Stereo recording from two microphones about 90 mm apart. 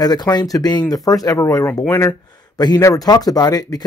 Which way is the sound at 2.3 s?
50° left (ahead or behind).